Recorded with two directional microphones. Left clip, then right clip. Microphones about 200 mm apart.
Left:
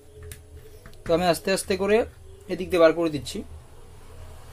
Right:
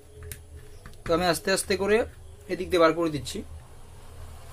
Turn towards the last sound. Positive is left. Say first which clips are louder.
# left 2 dB
turn(degrees=5)  # may be behind; listen again after turning